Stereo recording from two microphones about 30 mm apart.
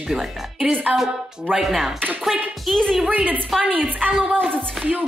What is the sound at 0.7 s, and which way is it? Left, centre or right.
Speech, right.